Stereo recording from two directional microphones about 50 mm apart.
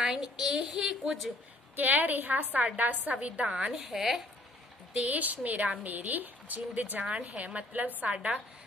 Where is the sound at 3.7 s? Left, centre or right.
Centre.